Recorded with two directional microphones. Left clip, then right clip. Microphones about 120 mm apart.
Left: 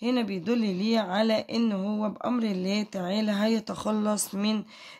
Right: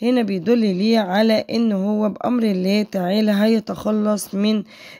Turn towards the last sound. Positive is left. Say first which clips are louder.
# right 8 dB
turn(degrees=-55)  # may be behind; listen again after turning